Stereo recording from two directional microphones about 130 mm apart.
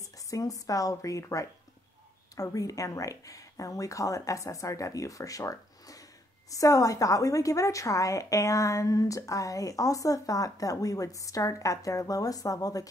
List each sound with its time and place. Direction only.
0.3 s a woman's voice: 25° left (ahead or behind)